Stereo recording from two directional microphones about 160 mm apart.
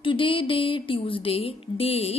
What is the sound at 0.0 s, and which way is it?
A woman's voice, 30° left (ahead or behind).